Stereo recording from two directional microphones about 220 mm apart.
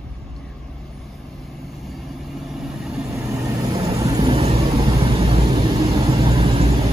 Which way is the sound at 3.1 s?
15° right (ahead or behind).